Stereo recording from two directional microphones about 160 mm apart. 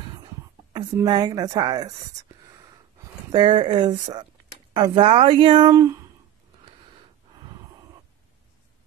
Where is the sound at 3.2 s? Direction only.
30° right (ahead or behind).